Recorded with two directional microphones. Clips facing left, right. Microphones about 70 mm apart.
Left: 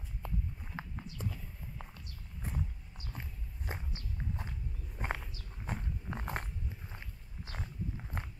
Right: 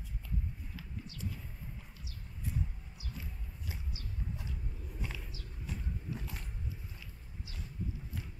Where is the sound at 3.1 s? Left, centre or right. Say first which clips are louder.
Left 2 dB; left.